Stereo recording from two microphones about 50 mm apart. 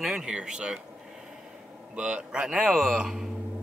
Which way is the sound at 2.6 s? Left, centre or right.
Centre.